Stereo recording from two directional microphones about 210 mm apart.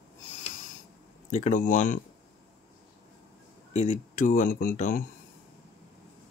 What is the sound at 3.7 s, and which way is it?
Speech, 35° left (ahead or behind).